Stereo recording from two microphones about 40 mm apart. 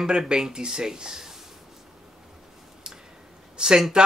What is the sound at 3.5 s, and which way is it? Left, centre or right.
Speech, centre.